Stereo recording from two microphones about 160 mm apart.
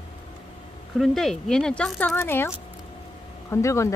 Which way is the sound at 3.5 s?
20° left (ahead or behind).